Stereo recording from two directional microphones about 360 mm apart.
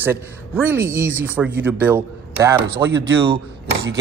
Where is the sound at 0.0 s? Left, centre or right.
Centre.